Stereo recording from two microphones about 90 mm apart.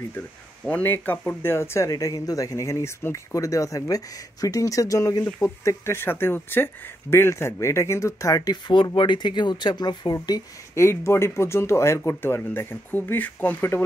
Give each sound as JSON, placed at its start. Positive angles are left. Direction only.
{"t": 0.7, "sound": "speech", "side_deg": 20}
{"t": 8.7, "sound": "speech", "side_deg": 65}
{"t": 10.7, "sound": "speech", "side_deg": 30}